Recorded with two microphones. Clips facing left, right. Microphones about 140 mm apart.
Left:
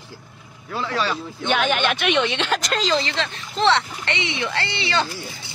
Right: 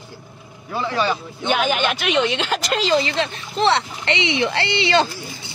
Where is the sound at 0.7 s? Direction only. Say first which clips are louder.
Right 3 dB; 5° right (ahead or behind).